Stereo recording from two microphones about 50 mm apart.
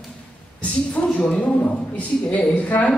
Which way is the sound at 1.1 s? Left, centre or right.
Left.